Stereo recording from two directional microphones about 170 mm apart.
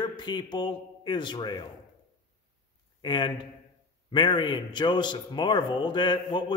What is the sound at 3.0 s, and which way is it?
A man's voice, 25° left (ahead or behind).